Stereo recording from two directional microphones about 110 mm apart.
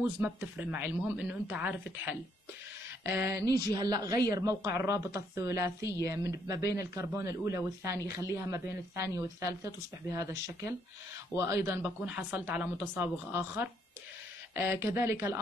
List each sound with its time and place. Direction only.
0.2 s speech: 15° right (ahead or behind)